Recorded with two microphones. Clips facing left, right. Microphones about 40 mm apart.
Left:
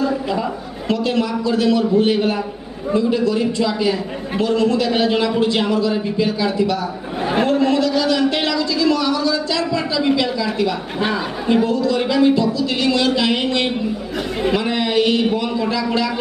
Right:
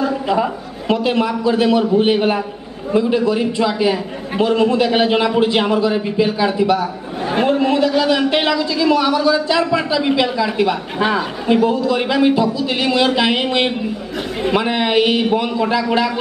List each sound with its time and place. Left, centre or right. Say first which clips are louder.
0.0 s a man's voice: right 3 dB; right